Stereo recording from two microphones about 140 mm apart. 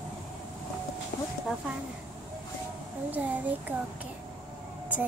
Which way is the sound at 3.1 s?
10° right (ahead or behind).